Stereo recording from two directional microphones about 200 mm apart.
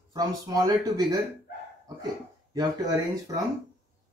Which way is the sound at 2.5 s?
20° right (ahead or behind).